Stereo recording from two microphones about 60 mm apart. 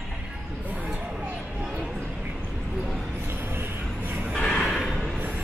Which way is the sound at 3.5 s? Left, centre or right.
Right.